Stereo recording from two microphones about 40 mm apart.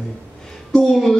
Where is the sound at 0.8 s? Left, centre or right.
Centre.